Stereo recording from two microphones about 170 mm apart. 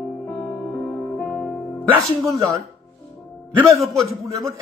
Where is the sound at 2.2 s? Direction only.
20° right (ahead or behind).